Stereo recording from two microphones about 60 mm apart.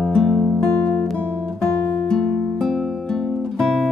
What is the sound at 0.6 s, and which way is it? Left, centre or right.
Guitar, left.